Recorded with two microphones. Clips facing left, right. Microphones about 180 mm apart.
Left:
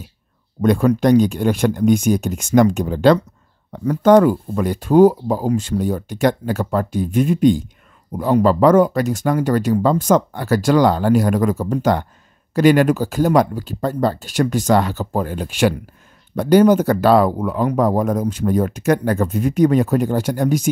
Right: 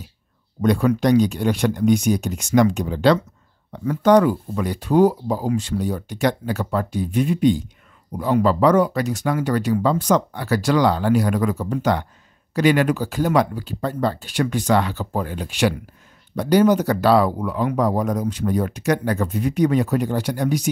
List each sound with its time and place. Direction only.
0.6 s speech: 50° left (ahead or behind)